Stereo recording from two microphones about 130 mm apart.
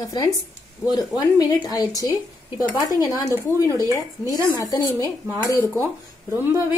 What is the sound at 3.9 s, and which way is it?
Speech, 25° left (ahead or behind).